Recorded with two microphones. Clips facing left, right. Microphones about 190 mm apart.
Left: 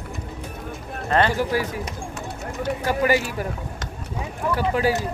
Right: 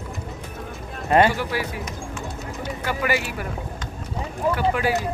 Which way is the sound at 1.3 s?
40° left (ahead or behind).